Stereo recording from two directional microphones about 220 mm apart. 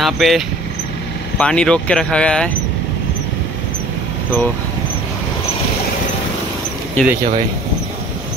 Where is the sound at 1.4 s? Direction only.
5° left (ahead or behind).